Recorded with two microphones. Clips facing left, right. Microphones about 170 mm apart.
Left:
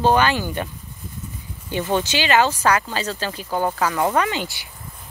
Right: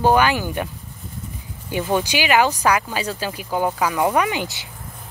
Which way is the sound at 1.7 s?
10° right (ahead or behind).